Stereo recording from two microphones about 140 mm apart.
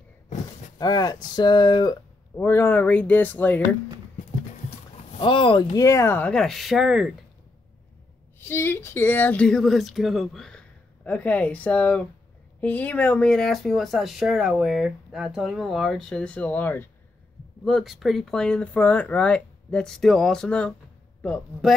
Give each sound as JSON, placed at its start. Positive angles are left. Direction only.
{"t": 0.7, "sound": "speech", "side_deg": 30}
{"t": 2.3, "sound": "speech", "side_deg": 15}
{"t": 5.2, "sound": "speech", "side_deg": 40}
{"t": 8.4, "sound": "speech", "side_deg": 15}
{"t": 17.6, "sound": "speech", "side_deg": 0}